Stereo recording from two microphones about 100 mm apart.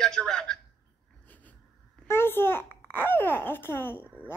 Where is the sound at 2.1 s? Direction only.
25° left (ahead or behind).